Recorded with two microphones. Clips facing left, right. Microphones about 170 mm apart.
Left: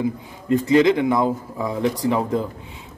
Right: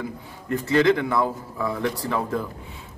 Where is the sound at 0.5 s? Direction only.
20° left (ahead or behind).